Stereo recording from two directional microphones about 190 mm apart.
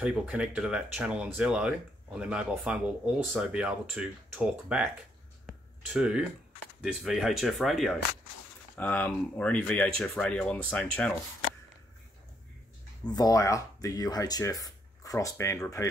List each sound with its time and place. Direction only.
0.0 s speech: 5° right (ahead or behind)
5.5 s a sound: 5° right (ahead or behind)
6.8 s speech: centre (ahead or behind)
13.0 s speech: 20° left (ahead or behind)